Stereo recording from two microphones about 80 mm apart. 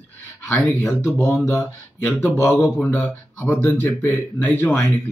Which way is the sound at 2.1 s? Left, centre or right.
Left.